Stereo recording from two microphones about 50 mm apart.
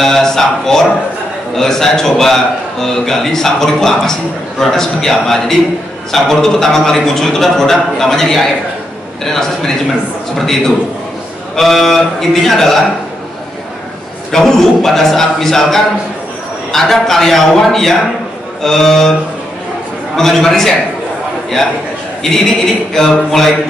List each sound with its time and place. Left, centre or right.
0.0 s a man's voice: centre
14.3 s a man's voice: centre
20.2 s a man's voice: centre
22.9 s a man's voice: centre